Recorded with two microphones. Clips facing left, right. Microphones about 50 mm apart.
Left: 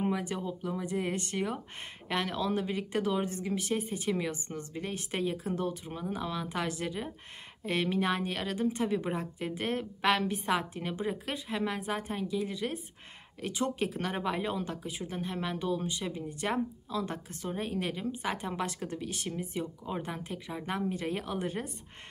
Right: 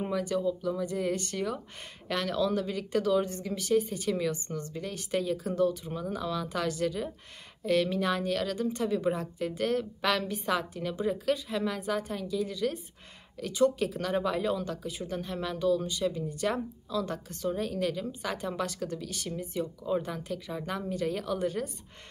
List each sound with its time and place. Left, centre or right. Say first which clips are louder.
0.0 s a woman's voice: right 3 dB; left